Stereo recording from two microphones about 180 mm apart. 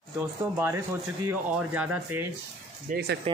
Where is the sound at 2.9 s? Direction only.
60° right (ahead or behind).